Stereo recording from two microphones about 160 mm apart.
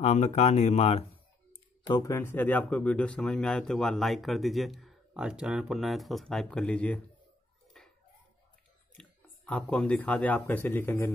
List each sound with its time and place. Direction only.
0.0 s speech: 45° left (ahead or behind)
1.9 s speech: 20° left (ahead or behind)
7.8 s a sound: 5° left (ahead or behind)
8.9 s speech: 5° left (ahead or behind)